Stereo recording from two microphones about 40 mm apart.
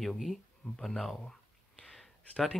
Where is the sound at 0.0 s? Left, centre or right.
Centre.